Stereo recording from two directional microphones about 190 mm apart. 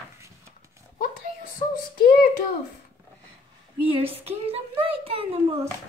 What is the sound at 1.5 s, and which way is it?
Child singing, 50° left (ahead or behind).